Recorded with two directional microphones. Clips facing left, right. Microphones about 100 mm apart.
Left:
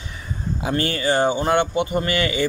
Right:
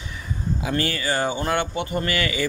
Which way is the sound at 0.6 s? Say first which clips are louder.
Left 4 dB; 30° left (ahead or behind).